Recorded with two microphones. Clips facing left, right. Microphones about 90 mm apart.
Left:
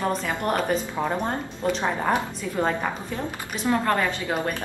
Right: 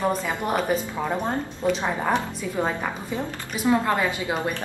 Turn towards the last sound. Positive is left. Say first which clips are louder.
# even
turn(degrees=-10)  # may be behind; listen again after turning